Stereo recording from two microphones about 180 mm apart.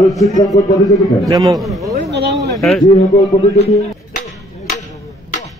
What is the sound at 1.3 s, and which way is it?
Speech, 20° right (ahead or behind).